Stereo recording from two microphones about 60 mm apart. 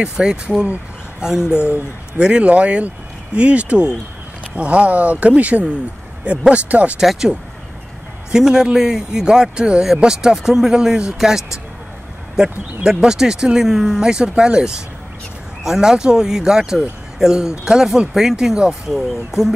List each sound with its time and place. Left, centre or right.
0.0 s speech: centre
2.1 s speech: centre
7.0 s speech: centre